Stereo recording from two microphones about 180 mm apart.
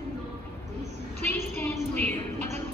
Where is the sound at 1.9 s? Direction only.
10° left (ahead or behind).